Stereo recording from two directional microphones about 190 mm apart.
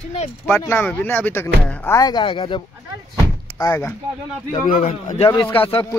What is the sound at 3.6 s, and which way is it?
Speech, 15° left (ahead or behind).